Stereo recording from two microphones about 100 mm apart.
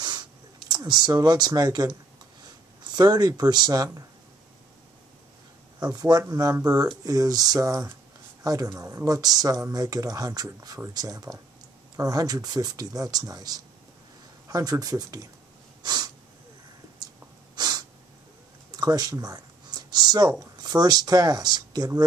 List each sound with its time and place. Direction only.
0.0 s a sound: 45° right (ahead or behind)
2.8 s speech: 40° right (ahead or behind)
5.8 s speech: 40° right (ahead or behind)
6.2 s speech: 30° right (ahead or behind)
15.8 s sneeze: 45° right (ahead or behind)
17.6 s breathing: 40° right (ahead or behind)
18.7 s speech: 40° right (ahead or behind)